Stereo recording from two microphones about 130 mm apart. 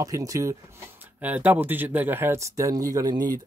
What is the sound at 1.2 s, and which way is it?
Speech, 10° right (ahead or behind).